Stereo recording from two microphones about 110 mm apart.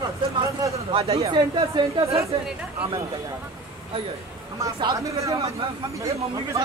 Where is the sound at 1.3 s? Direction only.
45° right (ahead or behind).